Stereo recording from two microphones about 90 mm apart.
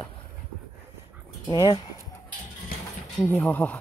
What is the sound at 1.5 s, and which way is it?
Speech, 55° left (ahead or behind).